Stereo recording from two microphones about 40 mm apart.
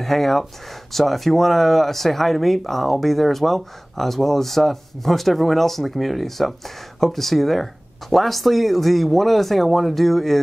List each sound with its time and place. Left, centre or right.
0.0 s speech: centre